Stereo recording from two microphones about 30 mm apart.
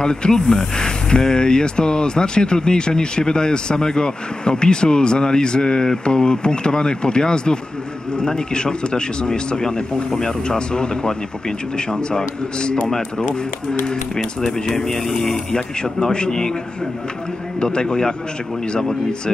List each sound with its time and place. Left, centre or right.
0.0 s speech: left
0.4 s speech: centre; by 12.7 s left
14.4 s speech: centre
15.8 s speech: left
17.7 s speech: left